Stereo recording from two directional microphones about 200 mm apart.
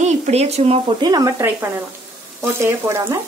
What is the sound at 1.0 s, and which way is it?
Speech, 15° right (ahead or behind).